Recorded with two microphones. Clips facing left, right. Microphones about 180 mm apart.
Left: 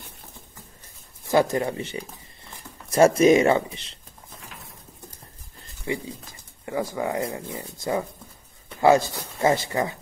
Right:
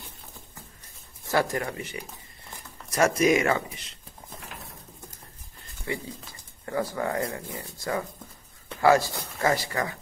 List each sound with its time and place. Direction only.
1.2 s speech: 20° left (ahead or behind)
5.9 s speech: 20° left (ahead or behind)